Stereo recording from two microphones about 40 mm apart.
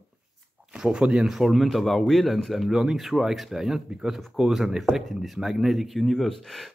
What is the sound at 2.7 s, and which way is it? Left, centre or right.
Speech, centre.